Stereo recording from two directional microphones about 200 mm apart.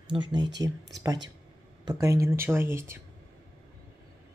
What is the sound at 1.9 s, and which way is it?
Speech, 15° right (ahead or behind).